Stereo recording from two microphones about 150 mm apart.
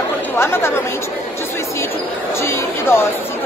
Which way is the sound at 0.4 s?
15° left (ahead or behind).